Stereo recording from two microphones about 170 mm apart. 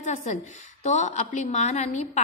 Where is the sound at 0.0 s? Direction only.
45° left (ahead or behind).